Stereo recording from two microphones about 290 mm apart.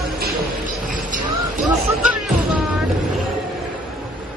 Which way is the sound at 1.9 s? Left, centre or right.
Centre.